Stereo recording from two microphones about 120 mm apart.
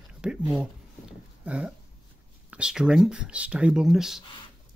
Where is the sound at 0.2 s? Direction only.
5° right (ahead or behind).